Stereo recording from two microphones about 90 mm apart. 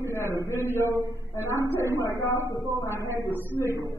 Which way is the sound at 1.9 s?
40° left (ahead or behind).